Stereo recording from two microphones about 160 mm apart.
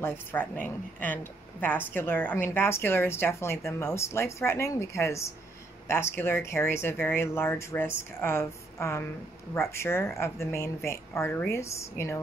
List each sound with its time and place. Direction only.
0.0 s a woman's voice: 10° left (ahead or behind)